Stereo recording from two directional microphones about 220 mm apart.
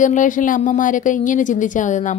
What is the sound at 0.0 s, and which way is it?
A woman's voice, 35° left (ahead or behind).